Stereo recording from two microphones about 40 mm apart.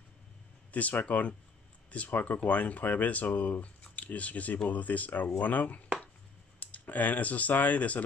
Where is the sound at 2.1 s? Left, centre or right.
Left.